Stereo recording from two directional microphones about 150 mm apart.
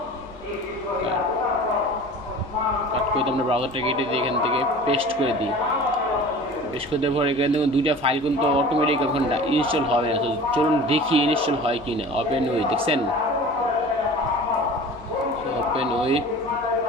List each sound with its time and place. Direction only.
3.2 s a man's voice: 40° right (ahead or behind)
6.9 s a man's voice: 40° right (ahead or behind)
15.7 s a sound: 40° right (ahead or behind)